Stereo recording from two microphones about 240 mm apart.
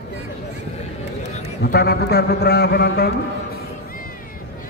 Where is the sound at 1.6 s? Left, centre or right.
Left.